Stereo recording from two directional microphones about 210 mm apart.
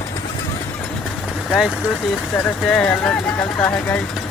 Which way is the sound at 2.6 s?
5° left (ahead or behind).